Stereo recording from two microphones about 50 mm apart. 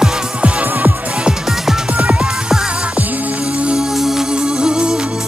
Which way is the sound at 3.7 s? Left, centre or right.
Centre.